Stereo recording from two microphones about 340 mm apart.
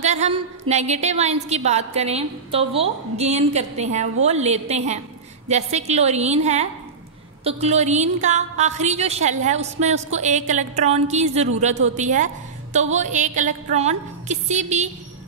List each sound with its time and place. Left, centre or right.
0.0 s a woman's voice: centre